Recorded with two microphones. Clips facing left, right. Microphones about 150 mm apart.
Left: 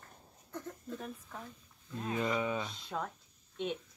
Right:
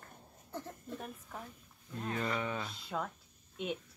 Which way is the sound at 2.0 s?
15° left (ahead or behind).